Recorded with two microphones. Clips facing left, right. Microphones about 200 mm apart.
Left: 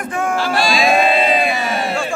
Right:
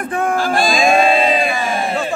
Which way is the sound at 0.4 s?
50° right (ahead or behind).